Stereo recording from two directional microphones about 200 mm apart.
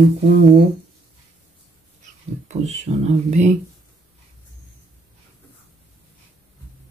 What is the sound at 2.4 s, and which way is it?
Speech, 35° right (ahead or behind).